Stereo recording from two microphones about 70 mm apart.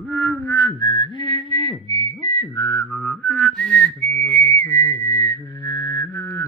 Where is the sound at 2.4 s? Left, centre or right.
Left.